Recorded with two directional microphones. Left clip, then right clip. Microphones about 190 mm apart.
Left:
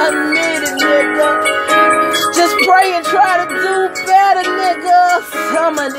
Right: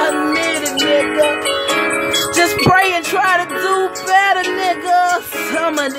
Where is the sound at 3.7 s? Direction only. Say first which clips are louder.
Left 1 dB; 45° right (ahead or behind).